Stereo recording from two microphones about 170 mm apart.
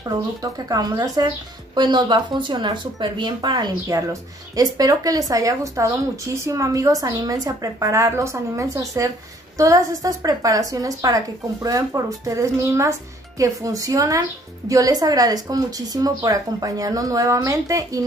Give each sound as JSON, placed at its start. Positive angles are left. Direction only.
{"t": 0.0, "sound": "speech", "side_deg": -20}